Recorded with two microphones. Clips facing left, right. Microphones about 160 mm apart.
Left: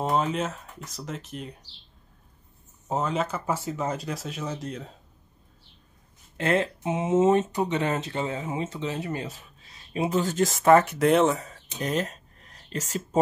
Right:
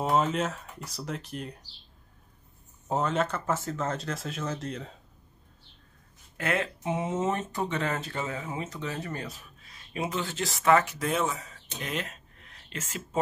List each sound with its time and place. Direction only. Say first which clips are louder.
0.0 s speech: even; centre (ahead or behind)
2.9 s speech: even; centre (ahead or behind)
6.3 s speech: left 5 dB; 30° left (ahead or behind)
9.3 s speech: left 1 dB; 30° left (ahead or behind); by 11.6 s 55° left (ahead or behind)
11.8 s a sound: left 7 dB; 40° left (ahead or behind)